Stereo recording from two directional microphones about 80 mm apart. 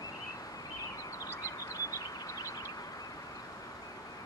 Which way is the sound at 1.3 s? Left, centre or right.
Left.